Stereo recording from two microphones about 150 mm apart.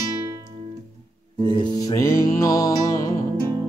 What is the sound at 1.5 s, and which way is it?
Music, 30° left (ahead or behind).